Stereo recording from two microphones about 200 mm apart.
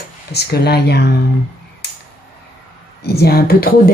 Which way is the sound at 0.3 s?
55° left (ahead or behind).